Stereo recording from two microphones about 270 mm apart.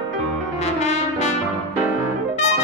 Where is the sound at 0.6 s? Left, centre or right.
Left.